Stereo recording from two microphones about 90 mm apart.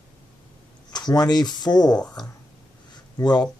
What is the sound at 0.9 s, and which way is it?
Speech, 50° left (ahead or behind).